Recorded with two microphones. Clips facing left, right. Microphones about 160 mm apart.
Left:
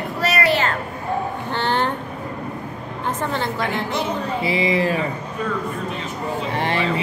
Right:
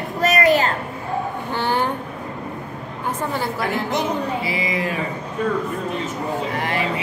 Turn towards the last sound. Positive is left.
turn(degrees=30)  # may be behind; listen again after turning